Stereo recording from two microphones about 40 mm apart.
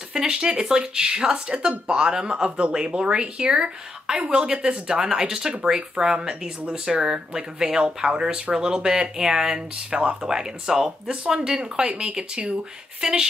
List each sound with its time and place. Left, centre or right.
0.1 s speech: centre